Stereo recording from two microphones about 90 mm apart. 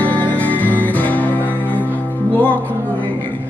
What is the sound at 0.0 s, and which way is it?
Music, 20° left (ahead or behind).